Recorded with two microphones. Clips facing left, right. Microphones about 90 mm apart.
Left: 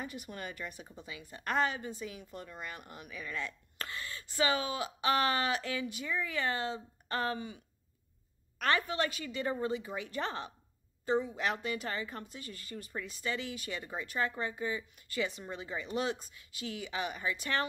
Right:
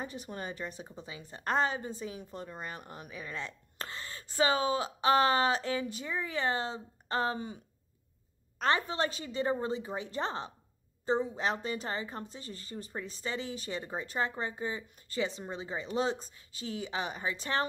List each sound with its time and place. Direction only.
0.0 s a woman's voice: 30° right (ahead or behind)